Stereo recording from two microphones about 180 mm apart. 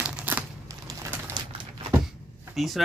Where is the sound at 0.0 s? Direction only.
5° right (ahead or behind).